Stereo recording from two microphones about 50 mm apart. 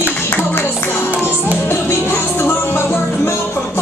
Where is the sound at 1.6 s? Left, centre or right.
Left.